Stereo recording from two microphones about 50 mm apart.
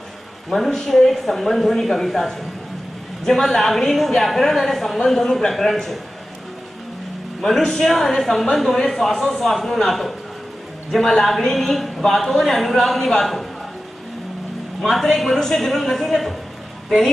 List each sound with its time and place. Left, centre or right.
0.5 s a man's voice: centre
7.6 s a man's voice: centre
14.8 s a man's voice: centre